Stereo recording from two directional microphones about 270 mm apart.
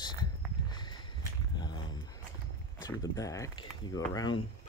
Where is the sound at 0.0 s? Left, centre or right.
Centre.